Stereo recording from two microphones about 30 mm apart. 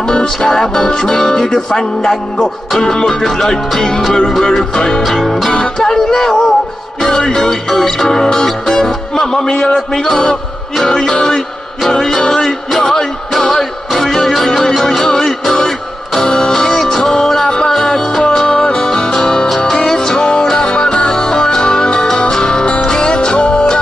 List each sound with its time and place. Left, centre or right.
0.1 s music: left
5.0 s music: centre
5.5 s music: left
14.9 s music: left